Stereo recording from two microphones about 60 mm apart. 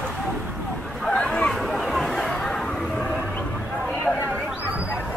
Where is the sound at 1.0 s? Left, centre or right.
Centre.